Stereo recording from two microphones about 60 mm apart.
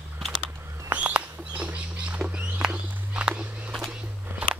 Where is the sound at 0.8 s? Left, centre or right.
Right.